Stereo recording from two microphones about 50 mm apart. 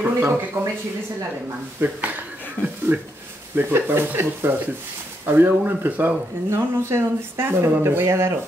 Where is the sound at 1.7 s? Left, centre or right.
Right.